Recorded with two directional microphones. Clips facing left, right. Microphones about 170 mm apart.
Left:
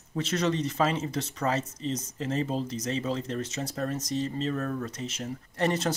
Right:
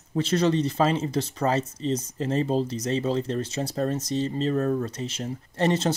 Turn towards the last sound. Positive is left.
turn(degrees=-25)  # may be behind; listen again after turning